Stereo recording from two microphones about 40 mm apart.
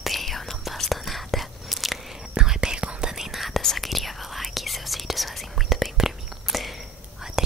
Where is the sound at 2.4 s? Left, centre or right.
Centre.